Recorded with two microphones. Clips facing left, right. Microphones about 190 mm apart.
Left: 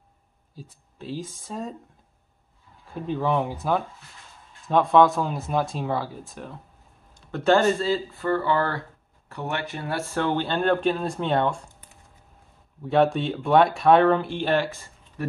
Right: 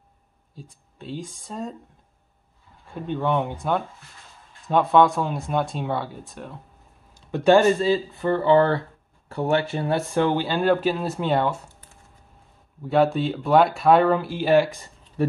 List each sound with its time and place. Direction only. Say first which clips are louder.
0.6 s speech: left 1 dB; centre (ahead or behind)
2.9 s speech: right 1 dB; centre (ahead or behind)
7.2 s speech: right 3 dB; 15° right (ahead or behind)
12.8 s speech: right 1 dB; centre (ahead or behind)